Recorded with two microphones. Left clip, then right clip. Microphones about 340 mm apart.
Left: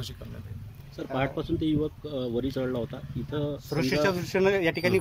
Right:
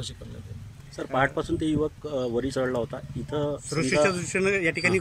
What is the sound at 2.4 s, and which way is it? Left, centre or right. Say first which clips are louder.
Speech: right 3 dB; right.